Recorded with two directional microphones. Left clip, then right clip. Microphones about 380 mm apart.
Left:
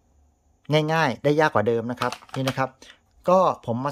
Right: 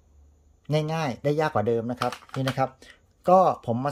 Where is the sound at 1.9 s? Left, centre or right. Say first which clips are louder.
Left 2 dB; left.